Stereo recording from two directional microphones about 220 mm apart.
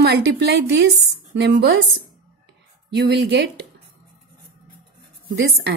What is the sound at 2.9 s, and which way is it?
Speech, 50° right (ahead or behind).